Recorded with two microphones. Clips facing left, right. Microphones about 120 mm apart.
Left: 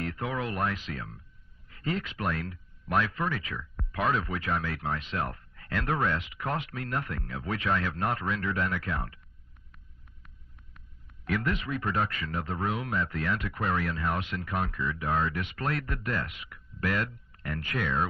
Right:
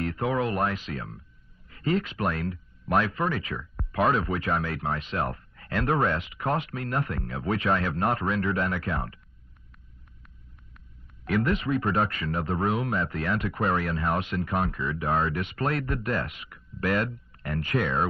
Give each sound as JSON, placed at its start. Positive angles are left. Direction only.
{"t": 0.0, "sound": "speech", "side_deg": -35}
{"t": 11.2, "sound": "speech", "side_deg": -35}